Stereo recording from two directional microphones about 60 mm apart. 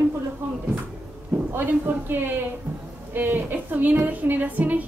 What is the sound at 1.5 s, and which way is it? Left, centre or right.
A woman's voice, right.